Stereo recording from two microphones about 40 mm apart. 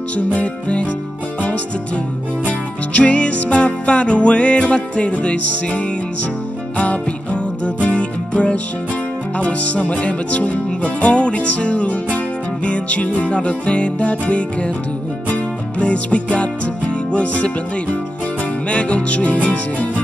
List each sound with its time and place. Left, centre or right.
0.3 s music: left
2.4 s music: left
7.6 s music: left